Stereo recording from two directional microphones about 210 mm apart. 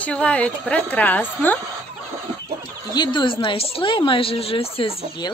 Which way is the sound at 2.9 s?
25° left (ahead or behind).